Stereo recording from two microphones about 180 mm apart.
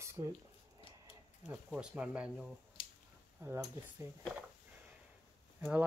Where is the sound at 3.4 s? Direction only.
15° right (ahead or behind).